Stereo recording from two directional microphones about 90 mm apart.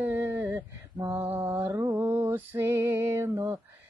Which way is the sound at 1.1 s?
20° right (ahead or behind).